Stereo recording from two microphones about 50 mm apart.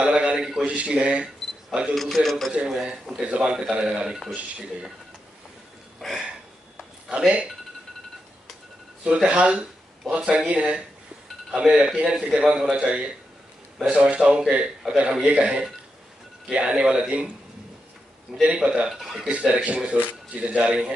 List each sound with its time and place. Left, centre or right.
0.0 s a sound: right
0.7 s speech: right
2.0 s a man's voice: centre
2.7 s speech: centre
5.9 s a sound: centre
9.0 s speech: right
18.4 s speech: centre
18.9 s a man's voice: centre
19.3 s speech: right